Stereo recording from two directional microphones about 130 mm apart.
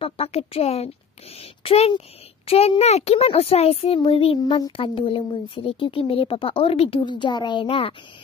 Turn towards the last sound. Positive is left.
turn(degrees=45)  # may be behind; listen again after turning